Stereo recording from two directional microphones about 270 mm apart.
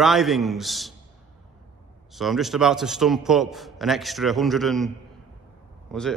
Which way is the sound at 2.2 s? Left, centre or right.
Centre.